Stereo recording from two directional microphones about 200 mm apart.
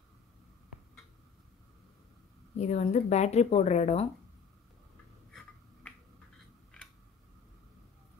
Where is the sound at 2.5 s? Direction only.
35° left (ahead or behind).